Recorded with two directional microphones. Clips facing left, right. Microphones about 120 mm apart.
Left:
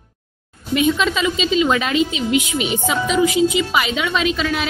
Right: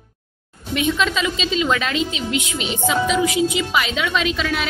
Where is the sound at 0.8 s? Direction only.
5° left (ahead or behind).